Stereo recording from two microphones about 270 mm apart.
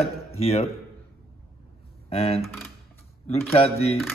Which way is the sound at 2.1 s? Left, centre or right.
Left.